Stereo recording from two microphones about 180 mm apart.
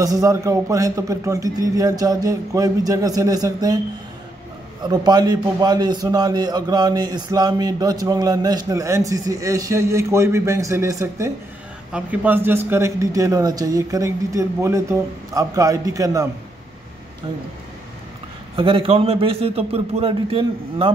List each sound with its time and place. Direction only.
0.0 s a man's voice: 20° right (ahead or behind)
4.8 s a man's voice: 20° right (ahead or behind)
18.6 s a man's voice: 30° right (ahead or behind)